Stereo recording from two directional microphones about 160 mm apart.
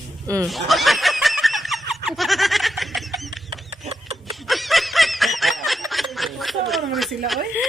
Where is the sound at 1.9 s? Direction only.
Centre (ahead or behind).